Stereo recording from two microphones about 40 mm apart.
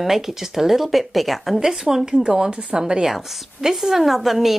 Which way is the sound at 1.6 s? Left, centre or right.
Centre.